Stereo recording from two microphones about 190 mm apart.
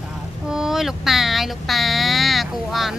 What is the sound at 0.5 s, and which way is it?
Speech, centre (ahead or behind).